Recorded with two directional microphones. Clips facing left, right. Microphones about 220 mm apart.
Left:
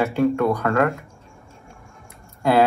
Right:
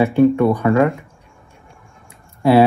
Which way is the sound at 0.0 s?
15° right (ahead or behind).